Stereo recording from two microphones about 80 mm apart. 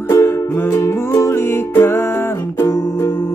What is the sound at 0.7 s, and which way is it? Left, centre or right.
Music, left.